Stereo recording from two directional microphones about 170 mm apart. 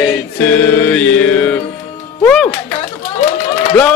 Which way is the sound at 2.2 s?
5° left (ahead or behind).